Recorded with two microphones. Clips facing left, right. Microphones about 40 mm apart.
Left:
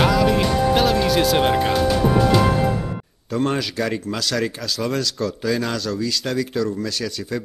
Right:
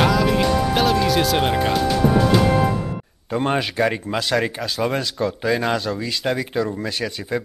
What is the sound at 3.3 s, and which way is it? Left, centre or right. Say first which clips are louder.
Speech: right 1 dB; right.